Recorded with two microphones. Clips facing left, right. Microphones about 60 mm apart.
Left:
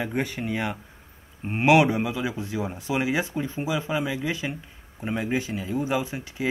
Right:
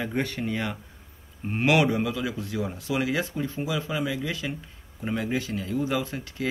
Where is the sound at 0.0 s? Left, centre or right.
Centre.